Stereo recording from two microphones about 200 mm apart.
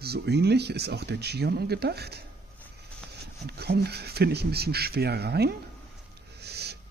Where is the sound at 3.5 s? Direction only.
55° right (ahead or behind).